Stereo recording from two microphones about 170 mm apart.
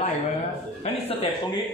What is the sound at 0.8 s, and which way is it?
Speech, 35° left (ahead or behind).